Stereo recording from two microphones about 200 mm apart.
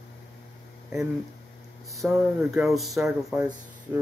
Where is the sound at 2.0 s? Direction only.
Centre (ahead or behind).